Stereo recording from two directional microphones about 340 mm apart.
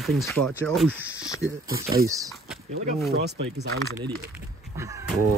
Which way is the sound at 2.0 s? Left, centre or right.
Centre.